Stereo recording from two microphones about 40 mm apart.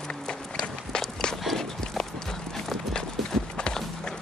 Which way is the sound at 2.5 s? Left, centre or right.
Centre.